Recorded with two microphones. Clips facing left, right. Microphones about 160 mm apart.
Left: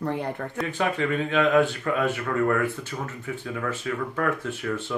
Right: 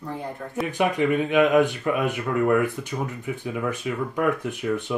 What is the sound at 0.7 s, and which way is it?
Speech, 15° right (ahead or behind).